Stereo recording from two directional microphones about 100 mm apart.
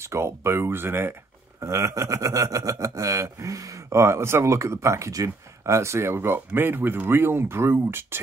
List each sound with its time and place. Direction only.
0.0 s speech: 25° right (ahead or behind)